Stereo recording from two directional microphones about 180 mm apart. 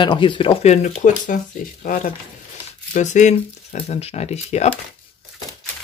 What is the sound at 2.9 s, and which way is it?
Speech, 40° left (ahead or behind).